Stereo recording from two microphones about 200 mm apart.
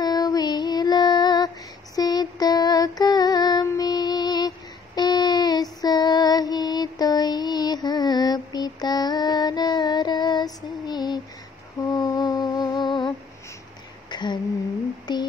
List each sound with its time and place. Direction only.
0.0 s female singing: 20° left (ahead or behind)
11.9 s humming: 20° left (ahead or behind)
14.1 s a sound: 20° left (ahead or behind)